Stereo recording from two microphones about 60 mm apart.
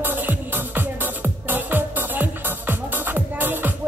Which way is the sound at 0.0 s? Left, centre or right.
Right.